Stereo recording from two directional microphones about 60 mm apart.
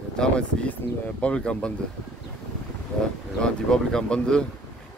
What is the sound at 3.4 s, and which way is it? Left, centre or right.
Speech, centre.